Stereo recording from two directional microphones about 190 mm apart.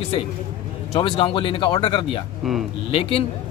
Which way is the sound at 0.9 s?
30° left (ahead or behind).